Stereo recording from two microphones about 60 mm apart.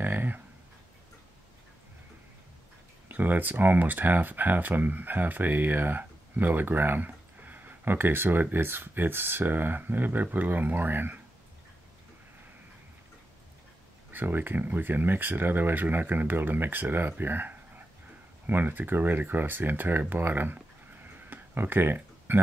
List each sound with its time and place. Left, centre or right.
0.0 s a sound: right
3.1 s speech: right
14.1 s speech: right